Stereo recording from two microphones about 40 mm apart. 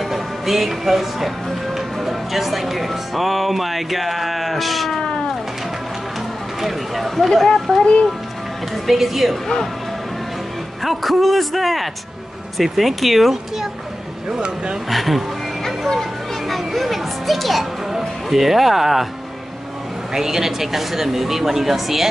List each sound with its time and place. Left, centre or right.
0.1 s speech: centre
6.6 s speech: centre
7.7 s speech: centre
8.8 s speech: centre
10.8 s speech: centre
14.9 s speech: centre
20.2 s speech: centre